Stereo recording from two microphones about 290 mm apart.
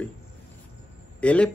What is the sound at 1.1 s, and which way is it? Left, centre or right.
Speech, centre.